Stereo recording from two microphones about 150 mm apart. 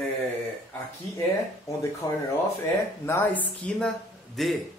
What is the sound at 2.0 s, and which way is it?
A man's voice, 25° left (ahead or behind).